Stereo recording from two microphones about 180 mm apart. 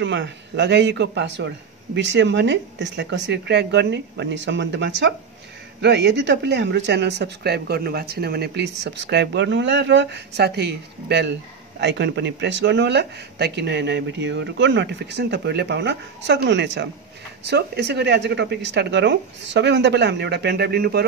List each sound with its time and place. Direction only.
0.0 s speech: 75° right (ahead or behind)
17.4 s speech: 70° right (ahead or behind)